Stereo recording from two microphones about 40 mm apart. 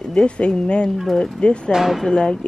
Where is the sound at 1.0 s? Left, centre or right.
Centre.